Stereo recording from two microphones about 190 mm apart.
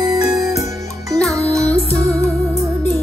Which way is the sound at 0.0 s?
15° right (ahead or behind).